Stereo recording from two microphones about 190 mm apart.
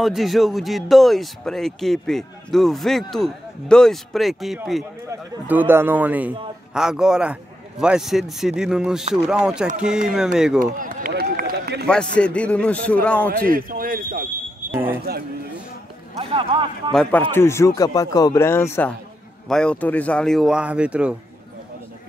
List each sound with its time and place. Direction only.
0.0 s speech: centre (ahead or behind)
5.0 s a man's voice: 10° right (ahead or behind)
10.6 s speech: 45° right (ahead or behind)
12.2 s speech: 5° left (ahead or behind)
13.4 s speech: 50° right (ahead or behind)
14.7 s speech: 10° right (ahead or behind)
16.2 s speech: 30° right (ahead or behind)
16.9 s speech: 5° left (ahead or behind)